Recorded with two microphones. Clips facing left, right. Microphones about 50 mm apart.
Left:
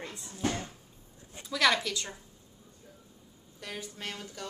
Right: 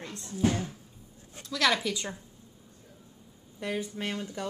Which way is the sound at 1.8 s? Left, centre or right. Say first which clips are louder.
Right 3 dB; centre.